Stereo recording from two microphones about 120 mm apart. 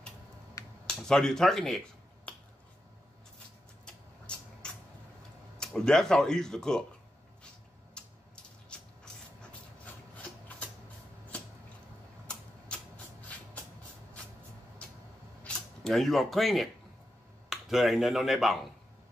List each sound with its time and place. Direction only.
0.8 s speech: 5° left (ahead or behind)
3.8 s a sound: 5° left (ahead or behind)
5.6 s speech: 5° left (ahead or behind)
8.0 s a sound: 10° left (ahead or behind)
12.3 s typewriter: 10° left (ahead or behind)
15.4 s speech: 5° left (ahead or behind)